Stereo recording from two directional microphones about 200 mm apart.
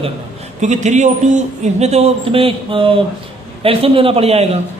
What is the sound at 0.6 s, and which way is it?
A man's voice, 35° right (ahead or behind).